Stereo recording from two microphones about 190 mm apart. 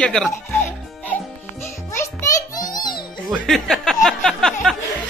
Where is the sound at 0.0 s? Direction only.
5° left (ahead or behind).